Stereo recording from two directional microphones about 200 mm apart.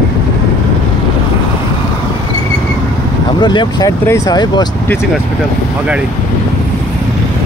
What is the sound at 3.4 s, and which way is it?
Speech, 20° left (ahead or behind).